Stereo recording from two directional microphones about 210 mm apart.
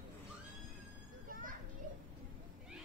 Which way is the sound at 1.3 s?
40° right (ahead or behind).